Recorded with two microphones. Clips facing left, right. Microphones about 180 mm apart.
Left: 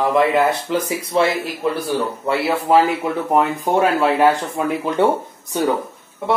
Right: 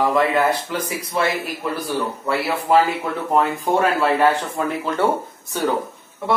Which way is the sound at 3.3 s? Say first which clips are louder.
Left 1 dB; 15° left (ahead or behind).